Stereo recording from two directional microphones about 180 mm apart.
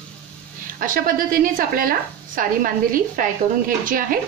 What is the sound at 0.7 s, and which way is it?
A woman's voice, 50° right (ahead or behind).